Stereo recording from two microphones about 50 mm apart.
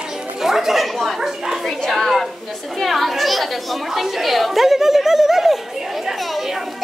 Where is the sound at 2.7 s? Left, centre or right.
Centre.